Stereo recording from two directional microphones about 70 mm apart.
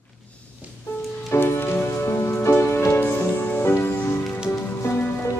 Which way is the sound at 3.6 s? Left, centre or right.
Left.